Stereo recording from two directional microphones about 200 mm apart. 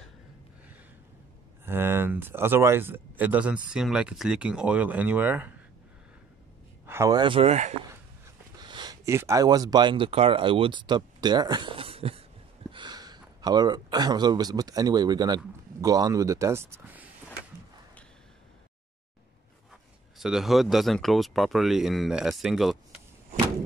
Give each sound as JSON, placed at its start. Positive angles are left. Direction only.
{"t": 1.7, "sound": "speech", "side_deg": -10}
{"t": 6.9, "sound": "speech", "side_deg": -15}
{"t": 8.5, "sound": "speech", "side_deg": -20}
{"t": 19.7, "sound": "speech", "side_deg": 0}